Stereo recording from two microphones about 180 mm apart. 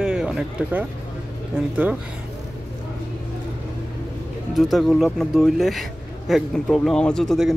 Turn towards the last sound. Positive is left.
turn(degrees=0)  # may be behind; listen again after turning